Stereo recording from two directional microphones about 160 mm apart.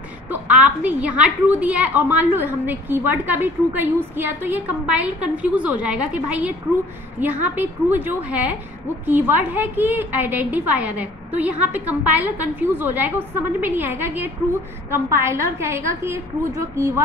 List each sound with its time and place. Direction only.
0.3 s a woman's voice: 10° right (ahead or behind)